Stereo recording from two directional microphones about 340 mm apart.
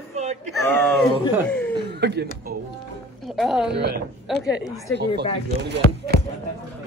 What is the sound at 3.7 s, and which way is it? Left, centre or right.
Speech, right.